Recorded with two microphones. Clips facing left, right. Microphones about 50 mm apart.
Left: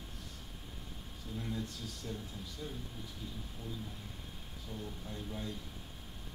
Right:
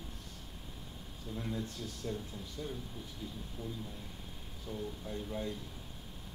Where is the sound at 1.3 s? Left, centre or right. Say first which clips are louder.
Right 1 dB; centre.